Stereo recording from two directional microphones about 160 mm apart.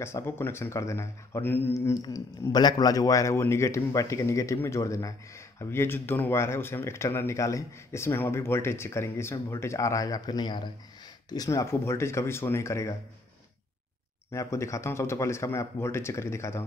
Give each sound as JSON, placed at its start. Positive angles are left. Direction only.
{"t": 0.0, "sound": "speech", "side_deg": 15}
{"t": 14.3, "sound": "speech", "side_deg": 20}